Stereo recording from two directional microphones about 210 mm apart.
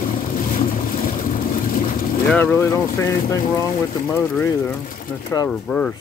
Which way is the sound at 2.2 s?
10° left (ahead or behind).